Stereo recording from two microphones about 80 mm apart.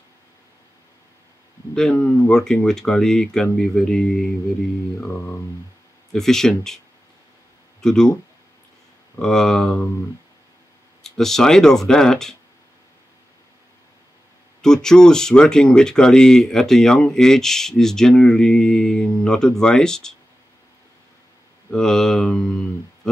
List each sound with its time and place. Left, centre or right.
1.8 s speech: centre
5.1 s speech: left
6.1 s speech: centre
7.8 s speech: centre
9.2 s speech: centre
11.0 s speech: centre
14.6 s speech: centre
21.6 s speech: centre